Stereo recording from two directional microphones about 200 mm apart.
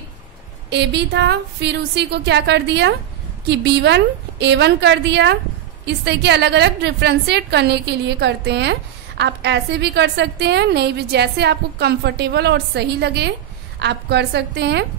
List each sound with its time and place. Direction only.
0.7 s a woman's voice: 60° right (ahead or behind)